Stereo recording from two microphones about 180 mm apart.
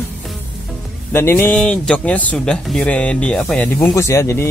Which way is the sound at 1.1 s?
10° left (ahead or behind).